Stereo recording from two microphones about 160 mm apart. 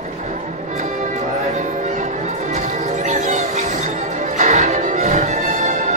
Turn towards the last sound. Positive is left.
turn(degrees=-50)  # may be behind; listen again after turning